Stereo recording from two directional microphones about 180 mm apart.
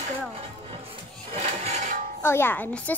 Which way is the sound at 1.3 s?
35° right (ahead or behind).